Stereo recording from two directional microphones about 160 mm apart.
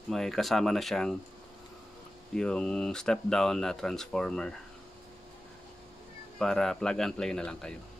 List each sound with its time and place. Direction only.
0.1 s speech: centre (ahead or behind)
2.3 s speech: 5° left (ahead or behind)
6.3 s speech: 5° left (ahead or behind)